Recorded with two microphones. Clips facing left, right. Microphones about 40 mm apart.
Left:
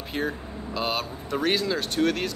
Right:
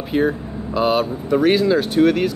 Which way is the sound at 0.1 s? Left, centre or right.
Centre.